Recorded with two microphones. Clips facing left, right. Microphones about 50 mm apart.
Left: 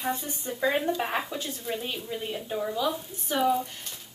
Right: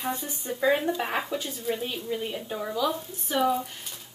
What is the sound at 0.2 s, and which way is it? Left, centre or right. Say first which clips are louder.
Speech: right 1 dB; centre.